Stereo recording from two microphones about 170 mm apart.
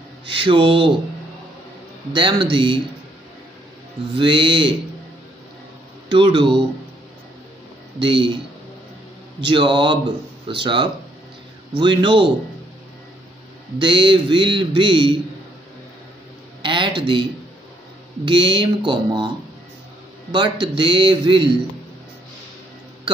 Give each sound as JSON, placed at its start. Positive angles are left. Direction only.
{"t": 0.3, "sound": "a man's voice", "side_deg": -30}
{"t": 2.1, "sound": "a man's voice", "side_deg": -30}
{"t": 4.1, "sound": "a man's voice", "side_deg": -30}
{"t": 6.0, "sound": "a man's voice", "side_deg": -30}
{"t": 8.0, "sound": "a man's voice", "side_deg": -30}
{"t": 9.5, "sound": "a man's voice", "side_deg": -30}
{"t": 13.7, "sound": "a man's voice", "side_deg": -30}
{"t": 16.6, "sound": "a man's voice", "side_deg": -30}